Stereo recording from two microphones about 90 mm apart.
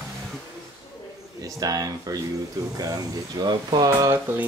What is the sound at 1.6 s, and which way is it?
Speech, 40° right (ahead or behind).